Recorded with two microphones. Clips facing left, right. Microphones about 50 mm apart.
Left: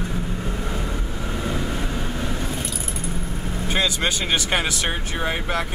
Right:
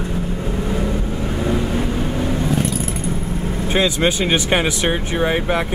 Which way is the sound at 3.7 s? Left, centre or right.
Centre.